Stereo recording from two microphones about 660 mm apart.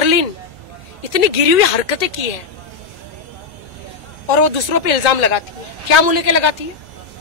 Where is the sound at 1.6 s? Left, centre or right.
Left.